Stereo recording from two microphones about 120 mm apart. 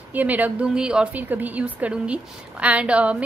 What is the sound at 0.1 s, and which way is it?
A woman's voice, 15° right (ahead or behind).